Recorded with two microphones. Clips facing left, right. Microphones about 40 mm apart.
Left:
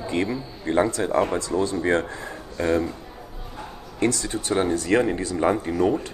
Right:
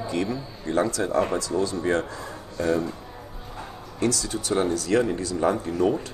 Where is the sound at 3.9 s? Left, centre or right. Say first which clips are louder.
Left 2 dB; left.